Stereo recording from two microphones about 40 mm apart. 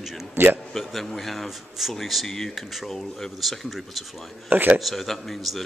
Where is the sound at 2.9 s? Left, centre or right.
Centre.